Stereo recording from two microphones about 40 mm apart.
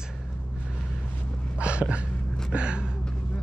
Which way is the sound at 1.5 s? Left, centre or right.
Right.